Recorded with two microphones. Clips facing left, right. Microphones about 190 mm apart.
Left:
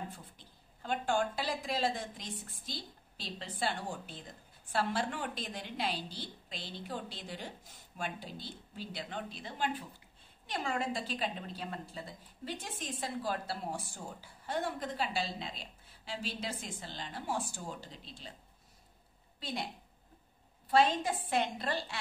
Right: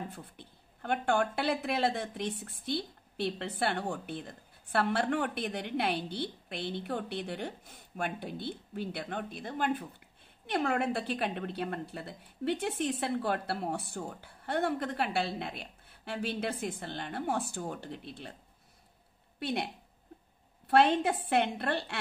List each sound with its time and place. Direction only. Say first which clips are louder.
0.1 s speech: right 5 dB; 60° right (ahead or behind)
19.4 s speech: right 6 dB; 65° right (ahead or behind)